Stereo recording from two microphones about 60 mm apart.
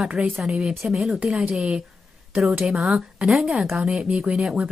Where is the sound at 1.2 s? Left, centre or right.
Centre.